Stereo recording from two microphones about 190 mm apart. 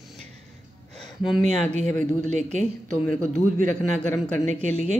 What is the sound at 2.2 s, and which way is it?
Speech, 40° right (ahead or behind).